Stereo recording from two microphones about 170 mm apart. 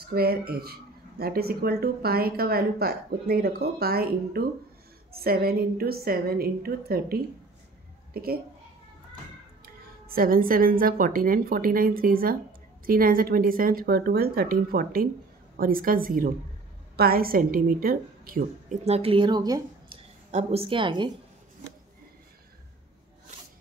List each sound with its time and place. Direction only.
0.0 s a child's voice: 65° right (ahead or behind)
10.0 s a woman's voice: 60° right (ahead or behind)
18.9 s speech: 35° right (ahead or behind)
20.2 s a woman's voice: 40° right (ahead or behind)